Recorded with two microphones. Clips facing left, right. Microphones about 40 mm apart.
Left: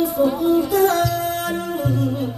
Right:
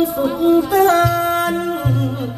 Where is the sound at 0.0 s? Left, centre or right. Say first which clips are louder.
Right 2 dB; right.